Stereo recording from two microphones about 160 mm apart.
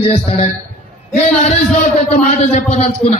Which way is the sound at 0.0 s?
40° left (ahead or behind).